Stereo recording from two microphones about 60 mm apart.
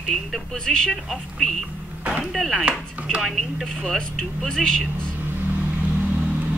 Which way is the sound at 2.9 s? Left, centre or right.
Right.